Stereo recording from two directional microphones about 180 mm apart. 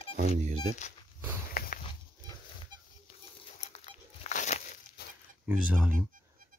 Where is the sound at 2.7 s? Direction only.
25° right (ahead or behind).